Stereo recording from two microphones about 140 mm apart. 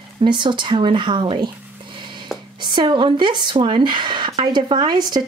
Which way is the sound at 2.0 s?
35° right (ahead or behind).